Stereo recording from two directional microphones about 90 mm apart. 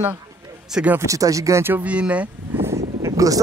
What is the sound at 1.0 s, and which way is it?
Speech, 40° right (ahead or behind).